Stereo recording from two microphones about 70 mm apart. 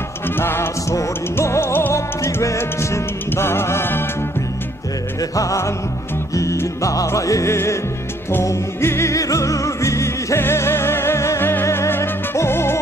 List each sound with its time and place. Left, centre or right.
0.4 s music: left
2.0 s music: left
5.3 s music: left